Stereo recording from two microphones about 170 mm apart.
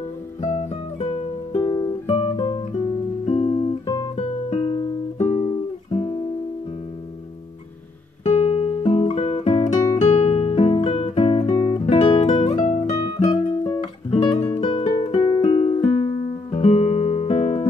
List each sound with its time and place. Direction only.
0.4 s music: 40° left (ahead or behind)
1.6 s music: 25° left (ahead or behind)
3.3 s guitar: 30° left (ahead or behind)
4.5 s music: 35° left (ahead or behind)
5.9 s music: 35° left (ahead or behind)
8.2 s guitar: 40° left (ahead or behind)
9.9 s music: 40° left (ahead or behind); by 11.8 s 25° left (ahead or behind)
11.8 s guitar: 35° left (ahead or behind)
13.3 s music: 20° left (ahead or behind)
14.2 s music: 35° left (ahead or behind)
16.5 s music: 40° left (ahead or behind)